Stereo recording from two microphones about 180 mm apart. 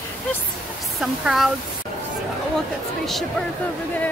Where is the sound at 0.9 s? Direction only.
Centre (ahead or behind).